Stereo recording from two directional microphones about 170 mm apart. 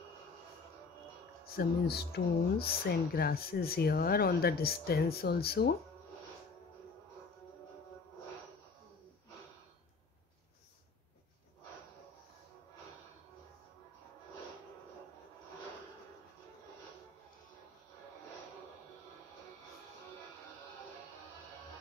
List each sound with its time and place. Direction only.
1.6 s speech: 65° left (ahead or behind)